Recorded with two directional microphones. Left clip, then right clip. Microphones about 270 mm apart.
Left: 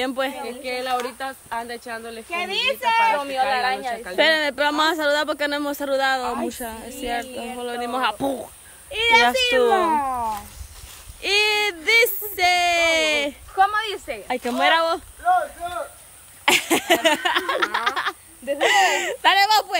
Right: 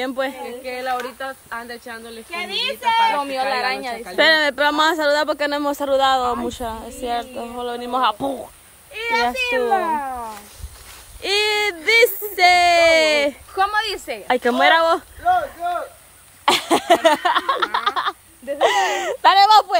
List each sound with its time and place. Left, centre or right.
0.0 s speech: centre
0.7 s speech: left
1.9 s speech: centre
3.2 s speech: right
4.0 s speech: centre
8.9 s speech: left
11.1 s speech: centre
13.6 s speech: right
14.2 s speech: centre
16.4 s a sound: centre
18.6 s speech: centre